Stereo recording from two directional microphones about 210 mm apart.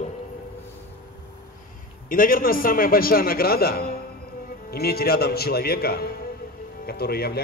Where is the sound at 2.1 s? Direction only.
40° left (ahead or behind).